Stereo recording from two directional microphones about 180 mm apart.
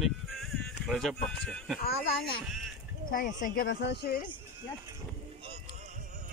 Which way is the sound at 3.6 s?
70° left (ahead or behind).